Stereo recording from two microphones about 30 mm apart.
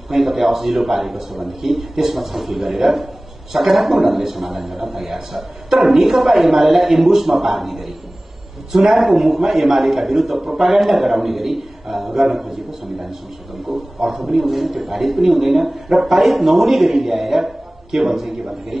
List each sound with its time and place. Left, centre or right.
0.1 s a man's voice: centre
13.9 s a man's voice: centre
14.2 s a man's voice: centre